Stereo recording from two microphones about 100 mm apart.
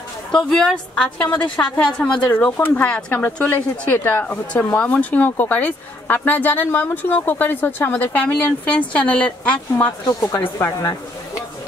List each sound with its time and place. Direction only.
0.3 s speech: 5° left (ahead or behind)
10.0 s speech: 35° left (ahead or behind)